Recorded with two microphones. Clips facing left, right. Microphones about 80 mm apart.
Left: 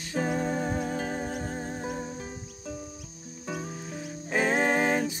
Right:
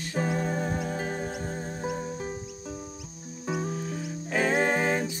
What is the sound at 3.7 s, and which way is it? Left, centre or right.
Music, centre.